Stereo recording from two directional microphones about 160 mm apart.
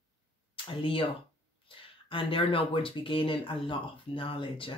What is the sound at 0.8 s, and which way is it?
Speech, 35° left (ahead or behind).